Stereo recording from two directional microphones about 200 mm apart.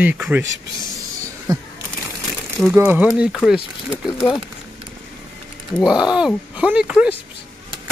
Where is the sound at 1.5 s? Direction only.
15° right (ahead or behind).